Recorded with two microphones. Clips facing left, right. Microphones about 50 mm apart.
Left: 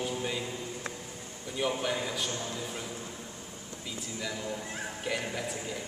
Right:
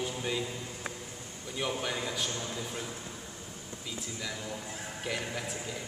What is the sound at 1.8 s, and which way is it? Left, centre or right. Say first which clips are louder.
Speech: left 2 dB; centre.